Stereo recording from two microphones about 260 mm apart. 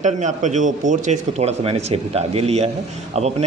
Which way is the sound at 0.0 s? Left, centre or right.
Right.